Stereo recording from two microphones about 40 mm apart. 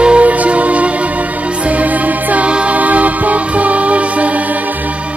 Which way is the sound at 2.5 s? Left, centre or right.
Right.